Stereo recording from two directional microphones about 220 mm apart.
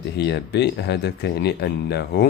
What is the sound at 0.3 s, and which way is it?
Speech, 50° left (ahead or behind).